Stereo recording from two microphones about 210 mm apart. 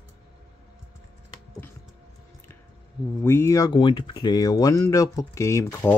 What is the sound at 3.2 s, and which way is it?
Speech, 15° left (ahead or behind).